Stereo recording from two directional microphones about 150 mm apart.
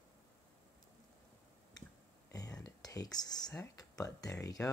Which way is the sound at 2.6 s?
25° left (ahead or behind).